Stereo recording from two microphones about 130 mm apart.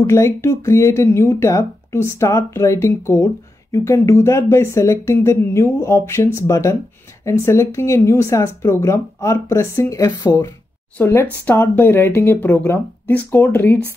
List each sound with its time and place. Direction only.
0.0 s speech: 20° left (ahead or behind)